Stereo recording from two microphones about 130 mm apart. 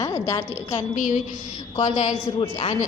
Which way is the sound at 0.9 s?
70° left (ahead or behind).